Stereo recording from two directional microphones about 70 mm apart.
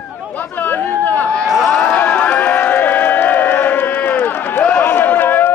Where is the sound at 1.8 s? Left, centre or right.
Left.